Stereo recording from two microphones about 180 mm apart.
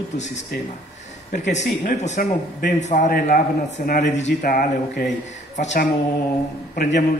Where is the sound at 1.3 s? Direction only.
40° left (ahead or behind).